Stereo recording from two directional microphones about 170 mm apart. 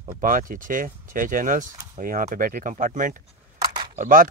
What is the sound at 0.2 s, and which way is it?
Speech, 55° right (ahead or behind).